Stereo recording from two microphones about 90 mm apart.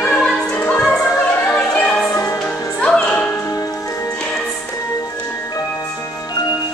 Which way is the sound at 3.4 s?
40° left (ahead or behind).